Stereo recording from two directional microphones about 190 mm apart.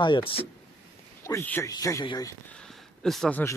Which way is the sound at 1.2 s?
10° left (ahead or behind).